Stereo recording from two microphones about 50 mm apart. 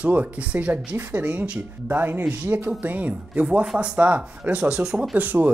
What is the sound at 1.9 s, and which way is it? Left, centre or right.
Speech, right.